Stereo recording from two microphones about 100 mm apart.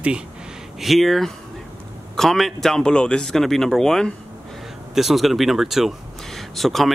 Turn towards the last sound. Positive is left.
turn(degrees=0)  # may be behind; listen again after turning